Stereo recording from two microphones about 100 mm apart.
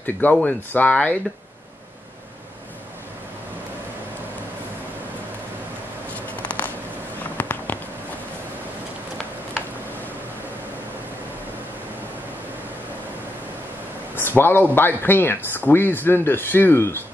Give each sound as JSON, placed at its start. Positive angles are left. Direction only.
{"t": 0.0, "sound": "speech", "side_deg": 15}
{"t": 6.1, "sound": "a sound", "side_deg": 15}
{"t": 14.1, "sound": "speech", "side_deg": 20}